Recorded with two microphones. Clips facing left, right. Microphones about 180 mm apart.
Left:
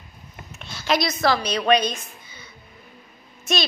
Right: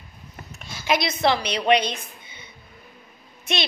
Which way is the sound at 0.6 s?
10° right (ahead or behind).